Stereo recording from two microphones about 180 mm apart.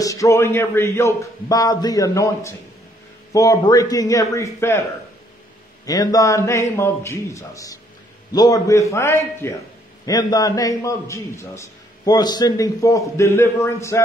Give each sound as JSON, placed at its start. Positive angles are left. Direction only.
{"t": 0.0, "sound": "a man's voice", "side_deg": 20}
{"t": 5.9, "sound": "a man's voice", "side_deg": 20}